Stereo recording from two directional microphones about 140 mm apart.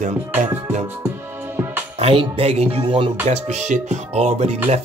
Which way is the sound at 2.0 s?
40° right (ahead or behind).